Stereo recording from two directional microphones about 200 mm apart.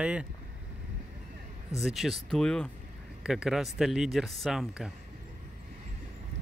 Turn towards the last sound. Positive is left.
turn(degrees=0)  # may be behind; listen again after turning